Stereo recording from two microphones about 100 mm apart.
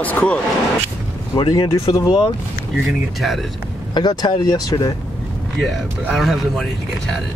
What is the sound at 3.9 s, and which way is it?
Speech, 45° left (ahead or behind).